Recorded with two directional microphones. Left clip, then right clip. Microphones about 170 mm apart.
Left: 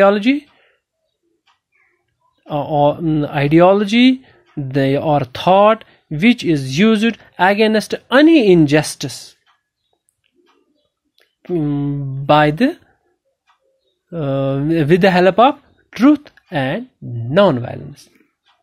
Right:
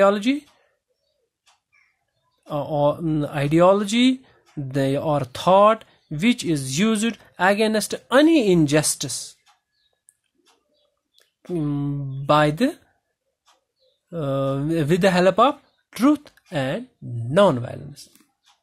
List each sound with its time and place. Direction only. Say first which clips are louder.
0.0 s speech: left 6 dB; 5° left (ahead or behind)
2.4 s speech: left 6 dB; 10° left (ahead or behind)
11.1 s a sound: left 7 dB; 5° left (ahead or behind)
12.3 s speech: left 6 dB; 10° left (ahead or behind)
14.1 s speech: left 5 dB; 5° left (ahead or behind)